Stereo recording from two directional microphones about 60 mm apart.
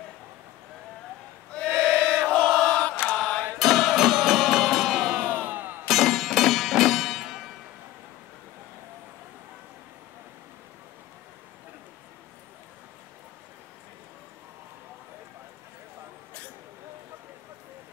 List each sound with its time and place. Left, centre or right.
1.8 s chant: centre
2.7 s chant: centre
3.5 s music: centre
5.3 s music: right
5.9 s music: centre